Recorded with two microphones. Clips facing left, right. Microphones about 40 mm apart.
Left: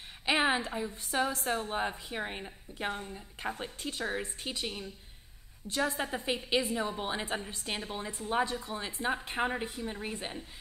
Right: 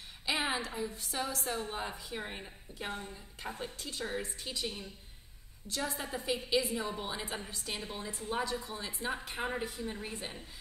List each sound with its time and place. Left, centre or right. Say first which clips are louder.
0.2 s a woman's voice: left 5 dB; left